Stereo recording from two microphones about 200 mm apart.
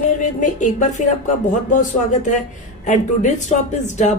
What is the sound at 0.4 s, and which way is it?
Speech, 40° left (ahead or behind).